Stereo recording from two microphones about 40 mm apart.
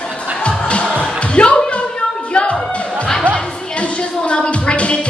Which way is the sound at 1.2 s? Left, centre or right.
Left.